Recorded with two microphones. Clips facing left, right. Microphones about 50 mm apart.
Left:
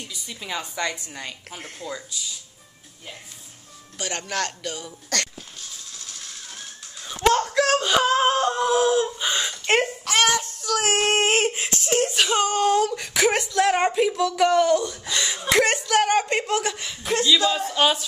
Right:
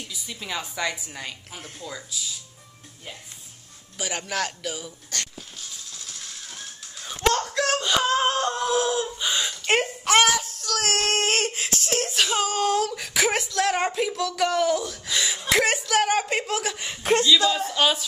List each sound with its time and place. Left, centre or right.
0.0 s a woman's voice: centre
4.0 s a woman's voice: centre
6.0 s a sound: centre
7.2 s wail: centre
10.2 s child singing: centre
16.9 s speech: right
17.6 s a woman's voice: centre